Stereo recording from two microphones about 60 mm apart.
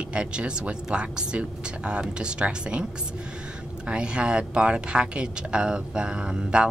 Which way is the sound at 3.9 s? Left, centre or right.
Centre.